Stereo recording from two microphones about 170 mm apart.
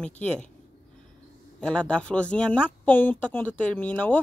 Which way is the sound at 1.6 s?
5° left (ahead or behind).